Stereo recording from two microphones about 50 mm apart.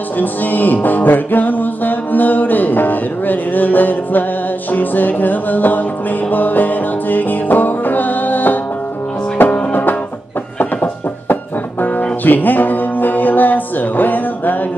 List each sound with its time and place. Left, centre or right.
0.2 s music: left
9.7 s music: left
10.6 s a sound: left
12.3 s music: left